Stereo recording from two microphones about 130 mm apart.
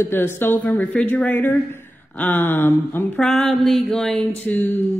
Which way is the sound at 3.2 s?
5° left (ahead or behind).